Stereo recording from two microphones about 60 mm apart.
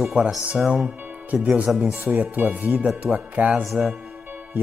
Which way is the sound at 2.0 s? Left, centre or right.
Right.